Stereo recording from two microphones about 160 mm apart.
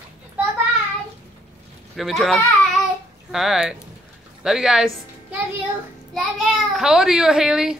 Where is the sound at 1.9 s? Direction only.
Centre (ahead or behind).